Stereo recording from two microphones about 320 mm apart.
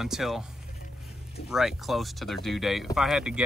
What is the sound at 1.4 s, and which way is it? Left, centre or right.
Speech, centre.